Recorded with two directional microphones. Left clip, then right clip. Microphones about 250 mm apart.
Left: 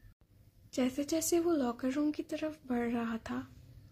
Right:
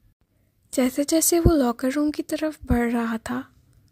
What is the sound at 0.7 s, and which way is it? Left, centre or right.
Speech, right.